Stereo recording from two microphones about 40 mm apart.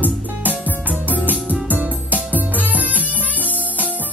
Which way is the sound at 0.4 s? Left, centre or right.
Right.